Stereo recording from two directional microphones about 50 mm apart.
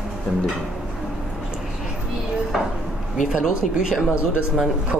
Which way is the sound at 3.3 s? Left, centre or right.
Centre.